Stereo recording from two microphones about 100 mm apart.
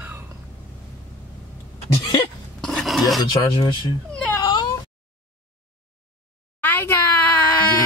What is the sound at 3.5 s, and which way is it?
Speech, 50° left (ahead or behind).